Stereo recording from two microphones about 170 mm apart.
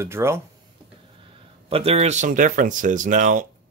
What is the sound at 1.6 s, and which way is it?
Speech, 35° right (ahead or behind).